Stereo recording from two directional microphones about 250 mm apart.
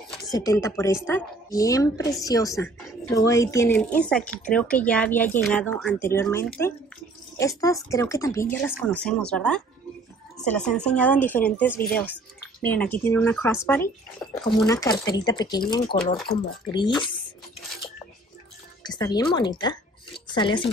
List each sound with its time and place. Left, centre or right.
0.1 s a woman's voice: centre
18.9 s a woman's voice: centre